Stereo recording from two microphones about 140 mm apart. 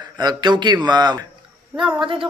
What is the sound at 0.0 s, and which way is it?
A man's voice, 30° right (ahead or behind).